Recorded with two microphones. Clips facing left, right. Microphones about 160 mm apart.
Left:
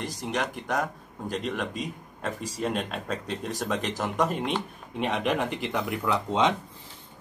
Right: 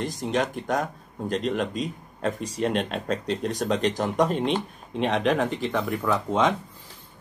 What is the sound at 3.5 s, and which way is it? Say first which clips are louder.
A man's voice: right 4 dB; 5° left (ahead or behind).